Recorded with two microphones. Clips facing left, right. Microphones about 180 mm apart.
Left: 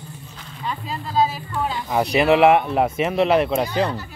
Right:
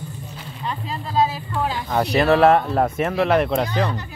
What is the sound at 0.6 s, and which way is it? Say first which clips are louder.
Speech: even; centre (ahead or behind).